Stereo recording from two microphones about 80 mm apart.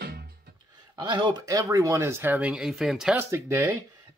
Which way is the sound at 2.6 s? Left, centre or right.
Centre.